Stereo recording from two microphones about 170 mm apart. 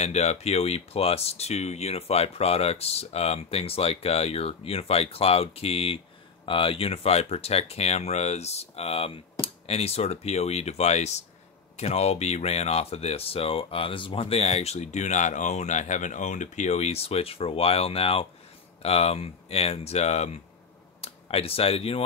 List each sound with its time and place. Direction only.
0.0 s speech: 40° left (ahead or behind)